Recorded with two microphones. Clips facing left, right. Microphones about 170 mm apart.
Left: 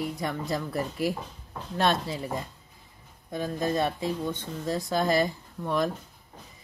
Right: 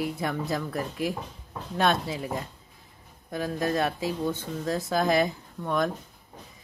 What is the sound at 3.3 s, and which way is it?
Speech, centre (ahead or behind).